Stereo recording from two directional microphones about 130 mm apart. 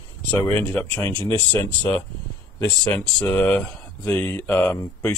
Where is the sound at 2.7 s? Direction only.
10° left (ahead or behind).